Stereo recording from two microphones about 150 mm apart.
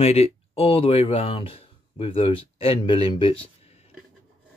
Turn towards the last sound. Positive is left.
turn(degrees=35)  # may be behind; listen again after turning